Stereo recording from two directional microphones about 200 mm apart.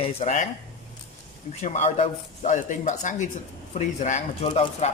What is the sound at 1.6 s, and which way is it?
Speech, 35° left (ahead or behind).